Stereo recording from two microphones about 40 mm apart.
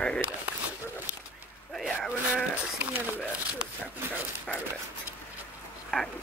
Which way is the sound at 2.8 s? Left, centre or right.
Right.